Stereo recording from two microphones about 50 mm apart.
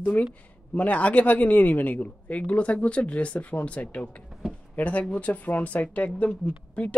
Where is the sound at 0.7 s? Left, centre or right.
Left.